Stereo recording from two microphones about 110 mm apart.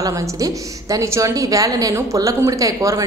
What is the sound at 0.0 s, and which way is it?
A woman's voice, 30° right (ahead or behind).